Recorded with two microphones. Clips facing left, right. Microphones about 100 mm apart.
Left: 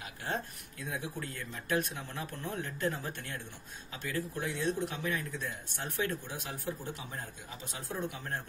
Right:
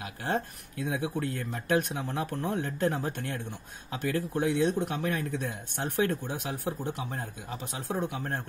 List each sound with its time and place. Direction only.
0.0 s speech: 70° right (ahead or behind)
1.4 s a man's voice: 55° right (ahead or behind)